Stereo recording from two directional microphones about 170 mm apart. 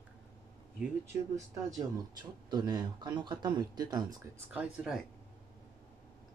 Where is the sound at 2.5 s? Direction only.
25° right (ahead or behind).